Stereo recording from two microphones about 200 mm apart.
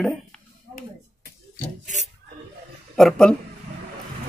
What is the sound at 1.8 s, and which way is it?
Rub, 35° right (ahead or behind).